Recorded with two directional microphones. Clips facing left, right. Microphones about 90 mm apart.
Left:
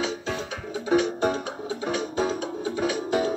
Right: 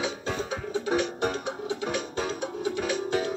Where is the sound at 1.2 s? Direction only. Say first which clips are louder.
Left 3 dB; 30° left (ahead or behind).